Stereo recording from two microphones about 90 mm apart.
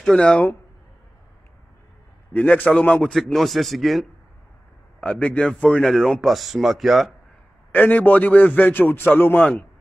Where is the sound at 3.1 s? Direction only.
Centre (ahead or behind).